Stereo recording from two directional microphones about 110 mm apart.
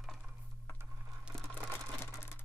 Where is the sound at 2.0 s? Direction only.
20° left (ahead or behind).